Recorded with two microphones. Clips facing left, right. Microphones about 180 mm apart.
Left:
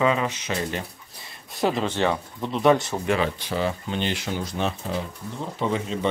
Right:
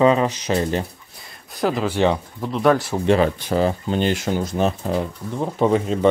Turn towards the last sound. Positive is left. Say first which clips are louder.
# right 8 dB
turn(degrees=-45)  # may be behind; listen again after turning